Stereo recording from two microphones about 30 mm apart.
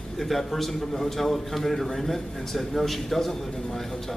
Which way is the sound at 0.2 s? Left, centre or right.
Centre.